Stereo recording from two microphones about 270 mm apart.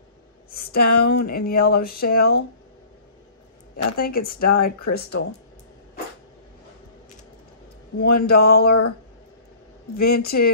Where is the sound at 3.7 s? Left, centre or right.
Left.